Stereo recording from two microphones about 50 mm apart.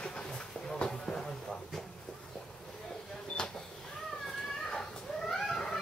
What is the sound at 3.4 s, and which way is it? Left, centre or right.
Cat, centre.